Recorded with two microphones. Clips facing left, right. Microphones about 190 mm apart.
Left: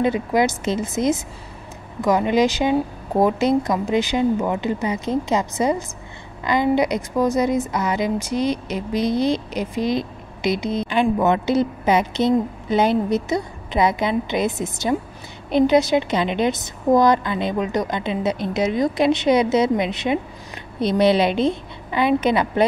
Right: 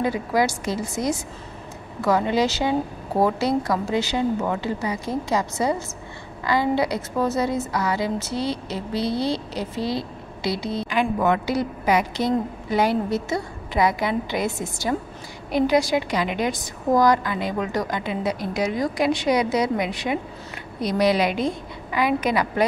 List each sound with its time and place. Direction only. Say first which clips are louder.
0.0 s a woman's voice: left 3 dB; 20° left (ahead or behind)